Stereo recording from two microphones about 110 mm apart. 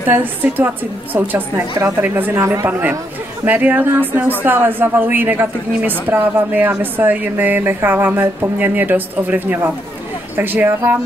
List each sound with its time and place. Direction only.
0.1 s a woman's voice: 15° right (ahead or behind)